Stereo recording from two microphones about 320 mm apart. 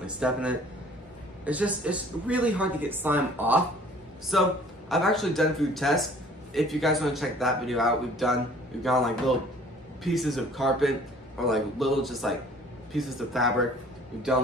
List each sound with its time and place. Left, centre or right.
0.0 s a man's voice: centre